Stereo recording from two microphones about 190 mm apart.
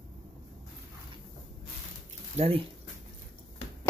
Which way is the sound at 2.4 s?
30° right (ahead or behind).